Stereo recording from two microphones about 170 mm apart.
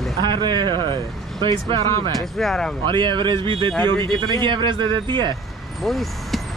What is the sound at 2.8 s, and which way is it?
Speech, 25° right (ahead or behind).